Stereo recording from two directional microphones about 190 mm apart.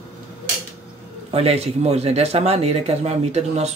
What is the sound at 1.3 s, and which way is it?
Speech, 35° right (ahead or behind).